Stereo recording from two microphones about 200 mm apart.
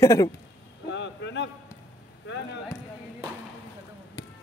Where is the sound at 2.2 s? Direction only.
60° left (ahead or behind).